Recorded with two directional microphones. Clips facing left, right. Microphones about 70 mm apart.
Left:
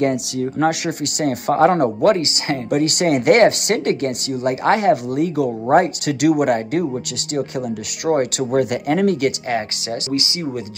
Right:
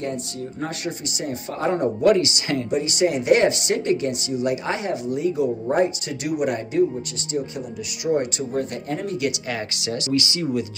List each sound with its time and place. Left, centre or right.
0.0 s speech: left
2.2 s speech: left
2.7 s speech: left
8.0 s speech: left
9.5 s speech: left